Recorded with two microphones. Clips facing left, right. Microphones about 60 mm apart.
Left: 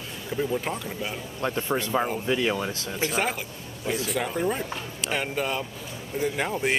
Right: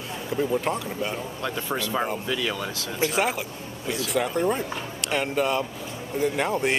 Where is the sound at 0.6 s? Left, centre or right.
Centre.